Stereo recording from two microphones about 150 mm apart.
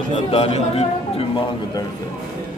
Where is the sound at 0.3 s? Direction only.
40° left (ahead or behind).